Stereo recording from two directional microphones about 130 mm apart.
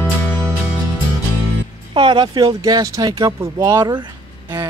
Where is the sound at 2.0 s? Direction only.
40° right (ahead or behind).